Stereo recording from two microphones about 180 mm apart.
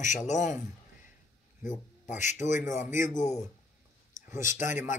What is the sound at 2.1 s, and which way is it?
A man's voice, 40° left (ahead or behind).